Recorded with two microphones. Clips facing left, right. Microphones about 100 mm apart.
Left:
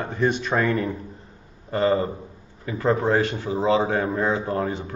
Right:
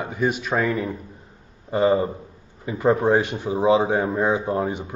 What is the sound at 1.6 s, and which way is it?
A man's voice, 15° right (ahead or behind).